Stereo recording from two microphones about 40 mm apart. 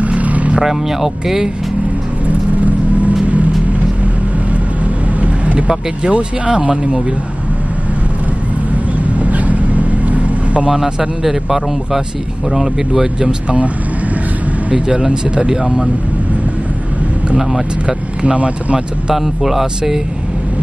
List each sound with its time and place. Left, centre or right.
0.0 s vehicle: right
0.6 s speech: centre
2.2 s vehicle: right
5.2 s vehicle: right
6.0 s speech: right
9.2 s vehicle: right
10.7 s speech: centre
14.7 s speech: right
17.8 s speech: right
19.1 s speech: centre
19.6 s speech: centre